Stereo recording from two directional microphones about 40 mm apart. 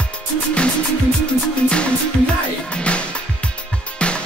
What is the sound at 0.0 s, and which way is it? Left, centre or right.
Music, left.